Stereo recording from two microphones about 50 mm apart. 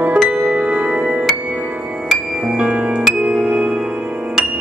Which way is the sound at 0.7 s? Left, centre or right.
Right.